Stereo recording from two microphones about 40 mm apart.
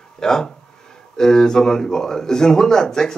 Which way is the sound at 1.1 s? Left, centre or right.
Centre.